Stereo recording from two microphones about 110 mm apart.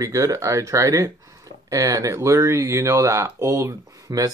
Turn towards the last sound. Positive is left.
turn(degrees=-30)  # may be behind; listen again after turning